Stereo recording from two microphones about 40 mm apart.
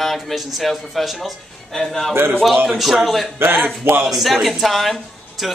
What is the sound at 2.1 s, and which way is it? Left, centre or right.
Speech, right.